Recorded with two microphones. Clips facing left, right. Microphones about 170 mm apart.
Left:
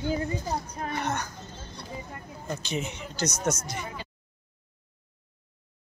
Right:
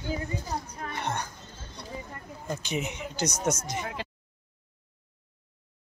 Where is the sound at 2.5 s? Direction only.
15° right (ahead or behind).